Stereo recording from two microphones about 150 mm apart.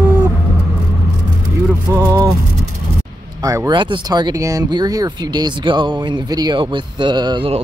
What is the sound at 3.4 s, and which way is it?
Speech, 25° right (ahead or behind).